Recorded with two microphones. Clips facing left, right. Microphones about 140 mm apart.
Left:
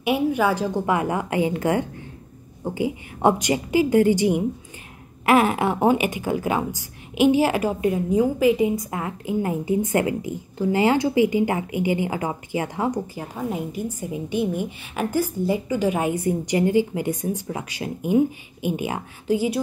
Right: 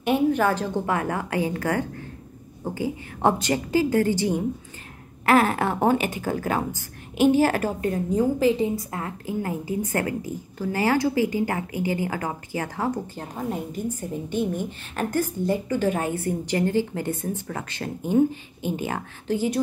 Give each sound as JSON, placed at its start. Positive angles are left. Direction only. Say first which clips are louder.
{"t": 0.0, "sound": "speech", "louder": "even", "side_deg": 10}